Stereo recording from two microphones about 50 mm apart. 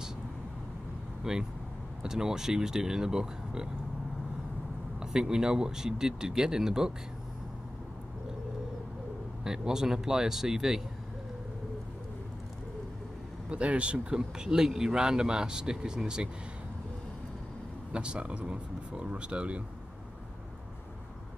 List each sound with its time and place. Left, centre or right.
1.3 s speech: centre
5.0 s speech: centre
9.4 s speech: centre
13.5 s speech: right
17.9 s speech: right